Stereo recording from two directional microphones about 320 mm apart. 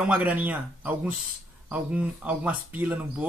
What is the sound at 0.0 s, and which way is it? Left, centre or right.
A woman's voice, centre.